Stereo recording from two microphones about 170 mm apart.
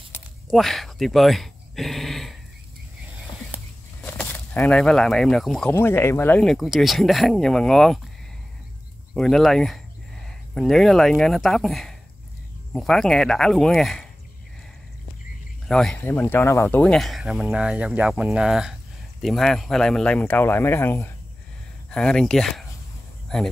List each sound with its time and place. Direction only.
0.5 s speech: centre (ahead or behind)
3.5 s a sound: 10° right (ahead or behind)
4.0 s speech: 10° left (ahead or behind)
9.1 s speech: centre (ahead or behind)
15.7 s speech: 5° left (ahead or behind)